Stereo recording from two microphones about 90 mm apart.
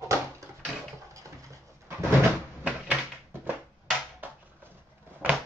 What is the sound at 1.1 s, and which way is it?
Pigeon, 35° right (ahead or behind).